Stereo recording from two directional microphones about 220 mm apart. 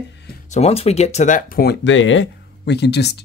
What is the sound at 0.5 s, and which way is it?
Speech, 30° left (ahead or behind).